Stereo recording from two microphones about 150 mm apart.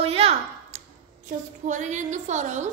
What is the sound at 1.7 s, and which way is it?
A woman's voice, 55° right (ahead or behind).